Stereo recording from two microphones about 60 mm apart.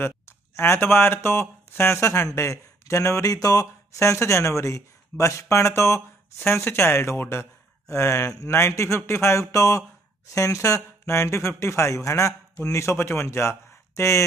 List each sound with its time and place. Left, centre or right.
0.6 s speech: left
6.6 s speech: left
7.9 s speech: left
9.5 s speech: left